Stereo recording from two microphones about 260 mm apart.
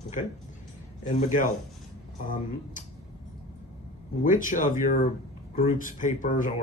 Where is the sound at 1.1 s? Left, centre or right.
Left.